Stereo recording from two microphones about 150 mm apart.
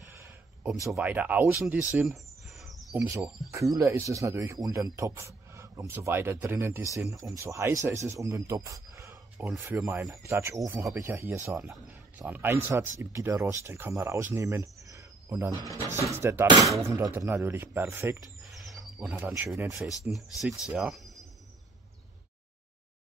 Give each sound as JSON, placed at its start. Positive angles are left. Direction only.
{"t": 0.9, "sound": "speech", "side_deg": -10}
{"t": 2.0, "sound": "a sound", "side_deg": 0}
{"t": 2.9, "sound": "speech", "side_deg": -20}
{"t": 20.1, "sound": "speech", "side_deg": 0}